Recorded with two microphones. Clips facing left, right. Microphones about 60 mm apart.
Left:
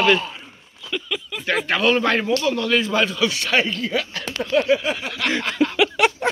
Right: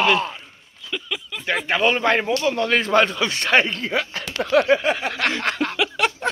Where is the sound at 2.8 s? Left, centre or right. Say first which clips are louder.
Right 2 dB; right.